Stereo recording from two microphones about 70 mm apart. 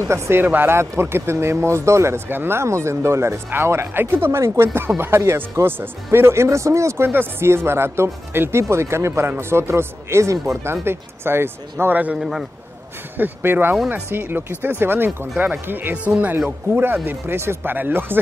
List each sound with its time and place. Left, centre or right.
0.0 s speech: right
0.4 s speech: right
7.1 s speech: right
11.8 s speech: right
12.2 s speech: centre
13.2 s speech: right